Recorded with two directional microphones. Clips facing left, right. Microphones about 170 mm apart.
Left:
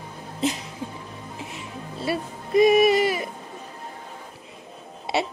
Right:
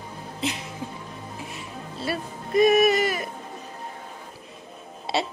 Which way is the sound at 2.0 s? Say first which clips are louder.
Left 2 dB; 25° left (ahead or behind).